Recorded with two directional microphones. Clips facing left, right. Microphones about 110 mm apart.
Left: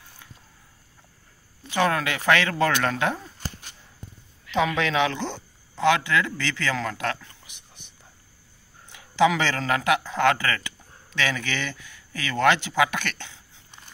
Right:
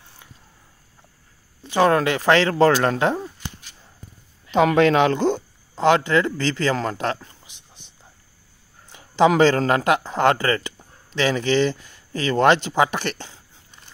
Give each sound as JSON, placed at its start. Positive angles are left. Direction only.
{"t": 1.6, "sound": "speech", "side_deg": -30}
{"t": 3.3, "sound": "dog", "side_deg": 45}
{"t": 4.5, "sound": "a man's voice", "side_deg": -50}
{"t": 8.9, "sound": "speech", "side_deg": -40}